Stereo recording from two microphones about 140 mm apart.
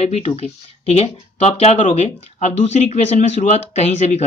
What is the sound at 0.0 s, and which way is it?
Speech, 50° left (ahead or behind).